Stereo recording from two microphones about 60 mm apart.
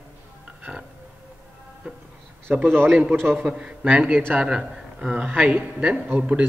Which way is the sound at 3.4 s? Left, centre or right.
Centre.